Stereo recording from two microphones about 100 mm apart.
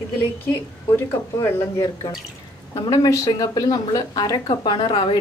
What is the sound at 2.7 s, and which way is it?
A woman's voice, 40° left (ahead or behind).